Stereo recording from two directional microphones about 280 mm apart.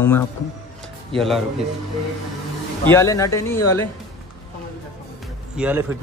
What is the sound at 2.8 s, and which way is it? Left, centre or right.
Speech, centre.